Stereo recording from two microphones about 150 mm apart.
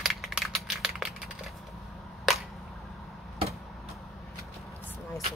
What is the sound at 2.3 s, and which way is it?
Camera, centre (ahead or behind).